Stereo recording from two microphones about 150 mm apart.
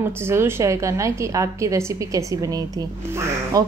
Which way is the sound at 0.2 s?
15° right (ahead or behind).